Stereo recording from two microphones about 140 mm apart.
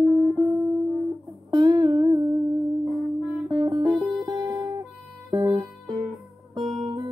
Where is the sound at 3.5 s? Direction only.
35° right (ahead or behind).